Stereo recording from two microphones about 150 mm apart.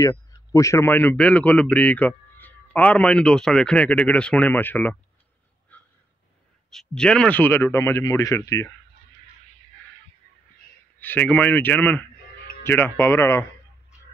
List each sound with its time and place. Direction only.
0.0 s speech: 20° left (ahead or behind)
5.7 s a sound: 10° left (ahead or behind)
6.7 s speech: 5° left (ahead or behind)
11.0 s speech: 10° left (ahead or behind)